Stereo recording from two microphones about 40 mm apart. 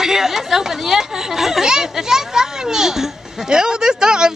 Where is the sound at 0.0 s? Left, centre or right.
Centre.